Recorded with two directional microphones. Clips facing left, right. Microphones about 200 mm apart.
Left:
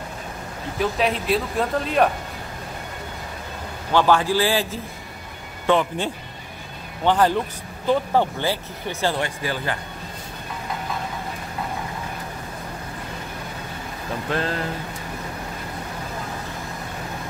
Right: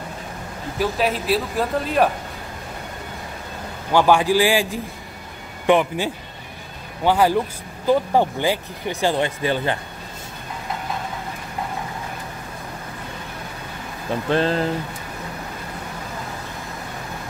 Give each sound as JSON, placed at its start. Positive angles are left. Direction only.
{"t": 0.7, "sound": "speech", "side_deg": 0}
{"t": 3.9, "sound": "speech", "side_deg": -15}
{"t": 14.3, "sound": "speech", "side_deg": -25}